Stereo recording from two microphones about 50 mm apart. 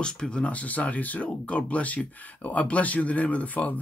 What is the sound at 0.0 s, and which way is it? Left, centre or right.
Speech, centre.